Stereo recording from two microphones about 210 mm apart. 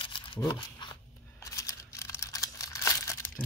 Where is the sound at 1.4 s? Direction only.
15° left (ahead or behind).